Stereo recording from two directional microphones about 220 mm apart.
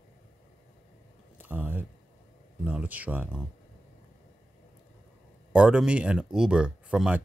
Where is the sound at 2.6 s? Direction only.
5° right (ahead or behind).